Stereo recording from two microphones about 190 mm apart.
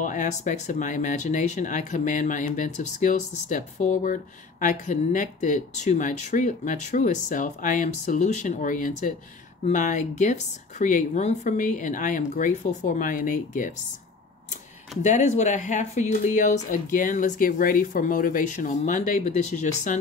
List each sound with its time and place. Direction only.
0.0 s speech: 40° left (ahead or behind)
15.0 s speech: 40° left (ahead or behind)